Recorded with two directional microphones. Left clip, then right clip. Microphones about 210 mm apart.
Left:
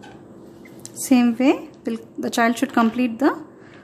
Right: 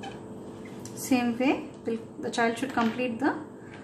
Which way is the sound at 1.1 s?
45° left (ahead or behind).